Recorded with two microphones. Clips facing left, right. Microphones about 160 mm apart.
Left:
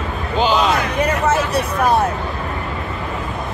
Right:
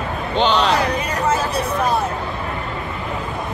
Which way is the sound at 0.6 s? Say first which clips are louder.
Even; 35° right (ahead or behind).